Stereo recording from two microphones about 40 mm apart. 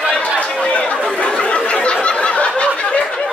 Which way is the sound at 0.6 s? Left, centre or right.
Left.